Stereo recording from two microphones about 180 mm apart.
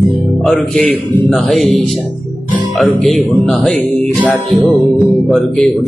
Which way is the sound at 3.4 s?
5° left (ahead or behind).